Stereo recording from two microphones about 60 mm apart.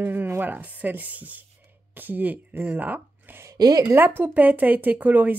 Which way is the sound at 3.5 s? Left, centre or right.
Right.